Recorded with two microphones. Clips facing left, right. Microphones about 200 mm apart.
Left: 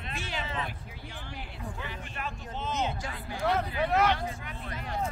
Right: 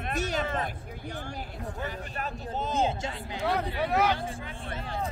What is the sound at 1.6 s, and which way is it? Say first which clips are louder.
Speech: right 4 dB; 40° right (ahead or behind).